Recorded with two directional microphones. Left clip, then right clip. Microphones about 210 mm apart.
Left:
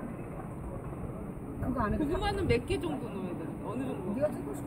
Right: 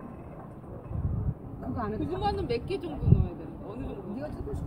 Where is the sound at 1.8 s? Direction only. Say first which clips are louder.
Left 1 dB; 45° left (ahead or behind).